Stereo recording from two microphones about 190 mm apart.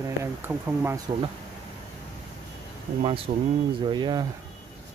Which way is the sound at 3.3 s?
40° right (ahead or behind).